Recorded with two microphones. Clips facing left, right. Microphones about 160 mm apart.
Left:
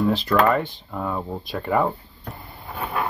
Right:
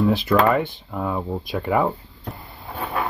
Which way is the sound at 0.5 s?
5° right (ahead or behind).